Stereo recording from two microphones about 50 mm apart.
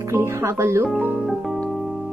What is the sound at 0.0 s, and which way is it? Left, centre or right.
Speech, right.